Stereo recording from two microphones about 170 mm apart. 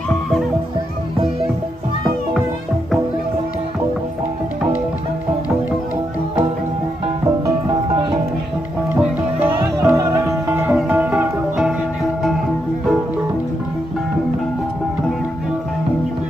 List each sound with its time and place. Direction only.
7.4 s music: 20° right (ahead or behind)
9.4 s music: 10° right (ahead or behind)